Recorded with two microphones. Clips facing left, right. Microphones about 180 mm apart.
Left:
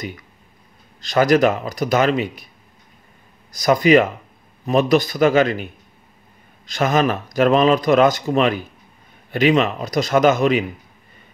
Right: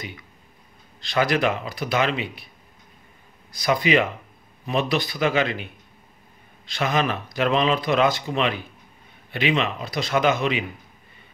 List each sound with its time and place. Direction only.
1.0 s speech: 45° left (ahead or behind)
3.5 s speech: 45° left (ahead or behind)